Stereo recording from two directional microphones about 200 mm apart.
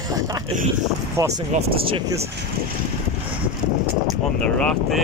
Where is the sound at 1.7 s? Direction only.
25° right (ahead or behind).